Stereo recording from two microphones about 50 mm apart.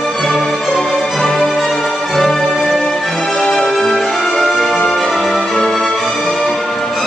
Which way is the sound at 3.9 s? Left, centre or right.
Centre.